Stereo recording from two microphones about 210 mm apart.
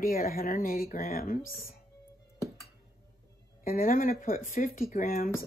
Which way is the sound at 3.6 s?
40° left (ahead or behind).